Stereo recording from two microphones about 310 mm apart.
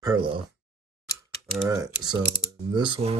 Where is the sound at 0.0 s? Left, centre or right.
Centre.